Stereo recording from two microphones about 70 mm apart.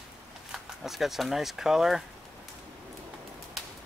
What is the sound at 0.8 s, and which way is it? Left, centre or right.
Speech, centre.